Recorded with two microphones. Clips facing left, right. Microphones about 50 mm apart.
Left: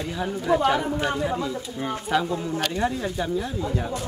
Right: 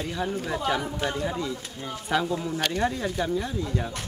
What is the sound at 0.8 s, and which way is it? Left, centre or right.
Speech, left.